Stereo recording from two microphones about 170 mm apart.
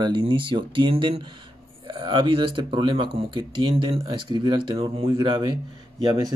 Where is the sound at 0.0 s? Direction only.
25° right (ahead or behind).